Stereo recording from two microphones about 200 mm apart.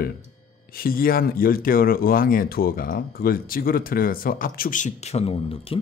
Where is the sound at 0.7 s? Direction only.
45° left (ahead or behind).